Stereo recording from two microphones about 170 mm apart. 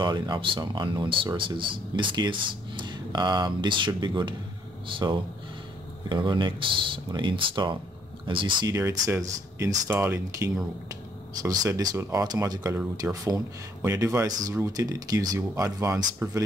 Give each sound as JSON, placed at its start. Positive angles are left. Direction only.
{"t": 0.0, "sound": "speech", "side_deg": -25}